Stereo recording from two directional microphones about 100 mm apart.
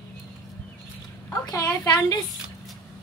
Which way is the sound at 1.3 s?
35° left (ahead or behind).